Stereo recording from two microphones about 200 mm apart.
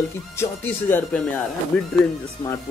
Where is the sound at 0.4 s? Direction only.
10° left (ahead or behind).